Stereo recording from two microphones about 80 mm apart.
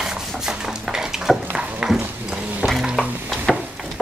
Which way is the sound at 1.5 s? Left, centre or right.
Centre.